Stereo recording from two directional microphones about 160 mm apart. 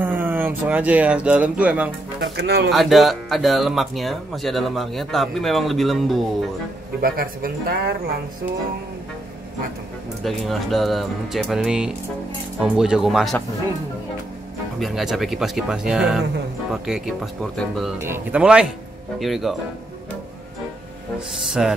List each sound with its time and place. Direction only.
0.0 s speech: 10° right (ahead or behind)
2.3 s speech: 90° right
2.7 s speech: centre (ahead or behind)
7.0 s speech: 65° right (ahead or behind)
10.2 s speech: centre (ahead or behind)
14.8 s speech: centre (ahead or behind)
18.0 s speech: 10° right (ahead or behind)
21.6 s speech: 5° right (ahead or behind)